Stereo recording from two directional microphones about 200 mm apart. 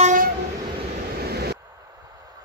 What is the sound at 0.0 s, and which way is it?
Train, 40° right (ahead or behind).